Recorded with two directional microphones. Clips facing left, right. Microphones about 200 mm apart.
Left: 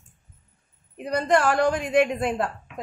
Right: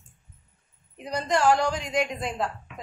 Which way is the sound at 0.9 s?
55° left (ahead or behind).